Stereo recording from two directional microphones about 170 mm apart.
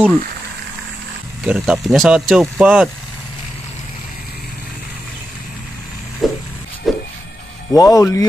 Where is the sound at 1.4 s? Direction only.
5° right (ahead or behind).